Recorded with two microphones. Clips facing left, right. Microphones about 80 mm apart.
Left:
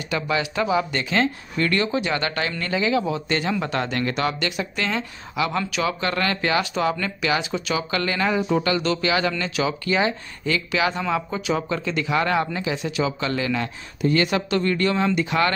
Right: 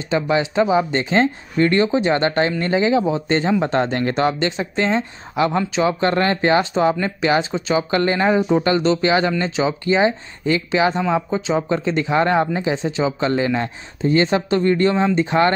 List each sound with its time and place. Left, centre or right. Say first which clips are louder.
0.1 s speech: right 6 dB; right